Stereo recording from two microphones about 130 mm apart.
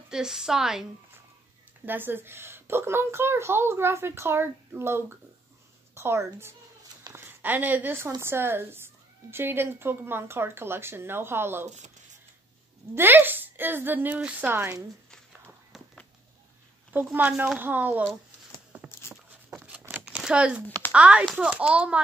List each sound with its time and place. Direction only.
0.1 s a woman's voice: 5° right (ahead or behind)
1.9 s a child's voice: 15° right (ahead or behind)
12.9 s a woman's voice: 15° right (ahead or behind)
15.0 s walk: 5° left (ahead or behind)
17.1 s a woman's voice: 10° right (ahead or behind)
18.7 s a sound: 15° right (ahead or behind)
20.9 s a woman's voice: 10° right (ahead or behind)